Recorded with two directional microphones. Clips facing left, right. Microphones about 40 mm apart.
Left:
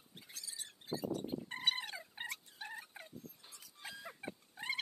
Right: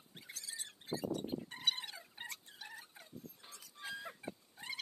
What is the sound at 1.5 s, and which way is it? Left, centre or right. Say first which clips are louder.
Fowl: left 3 dB; left.